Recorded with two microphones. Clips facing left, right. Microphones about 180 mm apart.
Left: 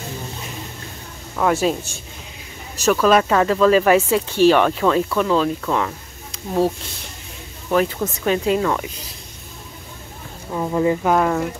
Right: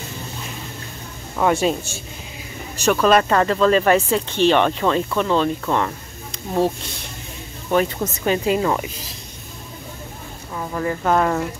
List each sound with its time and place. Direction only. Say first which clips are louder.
1.3 s speech: even; centre (ahead or behind)
7.7 s speech: even; centre (ahead or behind)
10.5 s speech: left 6 dB; 20° left (ahead or behind)
11.0 s speech: left 1 dB; 5° left (ahead or behind)